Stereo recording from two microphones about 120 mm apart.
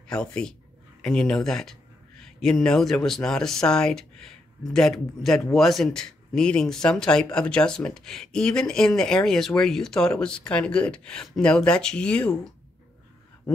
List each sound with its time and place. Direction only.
0.1 s speech: 5° left (ahead or behind)